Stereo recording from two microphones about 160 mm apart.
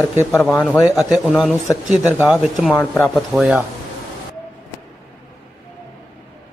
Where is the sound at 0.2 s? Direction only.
20° left (ahead or behind).